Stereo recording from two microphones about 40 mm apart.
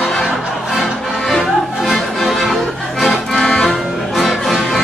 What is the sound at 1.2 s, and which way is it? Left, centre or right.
Music, centre.